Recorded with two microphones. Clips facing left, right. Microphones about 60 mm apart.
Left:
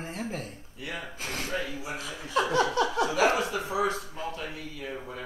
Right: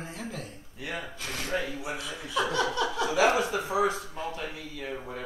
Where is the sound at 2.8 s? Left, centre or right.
Left.